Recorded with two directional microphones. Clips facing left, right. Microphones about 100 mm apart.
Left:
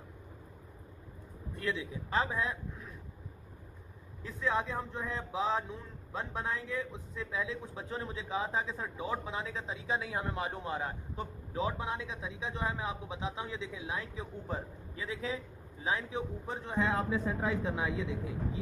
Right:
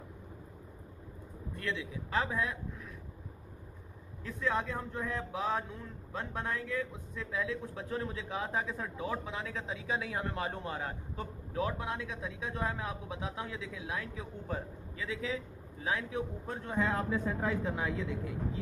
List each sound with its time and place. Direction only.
1.6 s speech: 25° left (ahead or behind)
4.2 s speech: 20° left (ahead or behind)
16.7 s speech: 15° left (ahead or behind)